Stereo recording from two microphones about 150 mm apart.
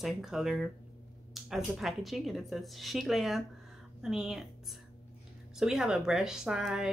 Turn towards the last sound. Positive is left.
turn(degrees=-5)  # may be behind; listen again after turning